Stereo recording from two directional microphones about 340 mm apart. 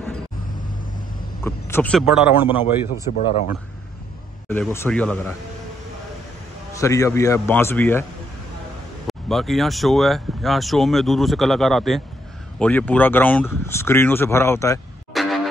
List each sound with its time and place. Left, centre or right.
1.4 s speech: centre
3.2 s speech: centre
4.5 s speech: centre
6.7 s a man's voice: centre
9.0 s speech: centre